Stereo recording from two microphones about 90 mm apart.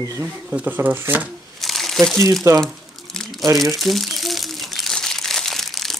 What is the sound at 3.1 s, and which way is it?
Crumpling, 5° left (ahead or behind).